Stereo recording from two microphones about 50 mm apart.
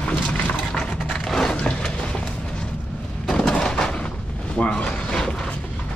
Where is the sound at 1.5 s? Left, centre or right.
Left.